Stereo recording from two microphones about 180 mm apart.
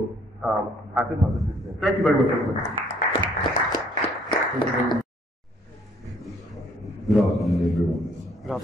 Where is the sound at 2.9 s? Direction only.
50° left (ahead or behind).